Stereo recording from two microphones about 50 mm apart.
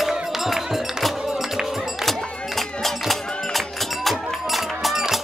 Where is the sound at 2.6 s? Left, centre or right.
Centre.